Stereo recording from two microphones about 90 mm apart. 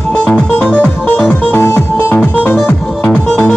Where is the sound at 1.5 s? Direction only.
30° left (ahead or behind).